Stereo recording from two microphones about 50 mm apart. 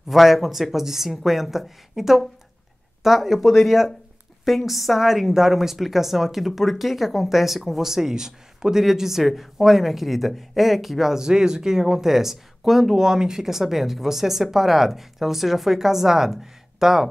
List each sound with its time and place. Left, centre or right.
0.1 s a woman's voice: centre